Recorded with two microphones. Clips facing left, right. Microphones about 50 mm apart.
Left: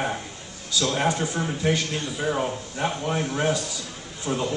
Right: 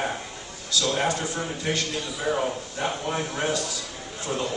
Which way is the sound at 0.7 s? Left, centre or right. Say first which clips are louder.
Left 1 dB; centre.